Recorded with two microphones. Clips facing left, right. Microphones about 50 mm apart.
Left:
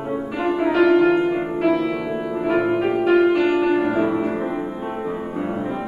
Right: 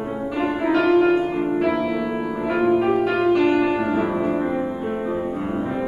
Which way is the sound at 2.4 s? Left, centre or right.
Centre.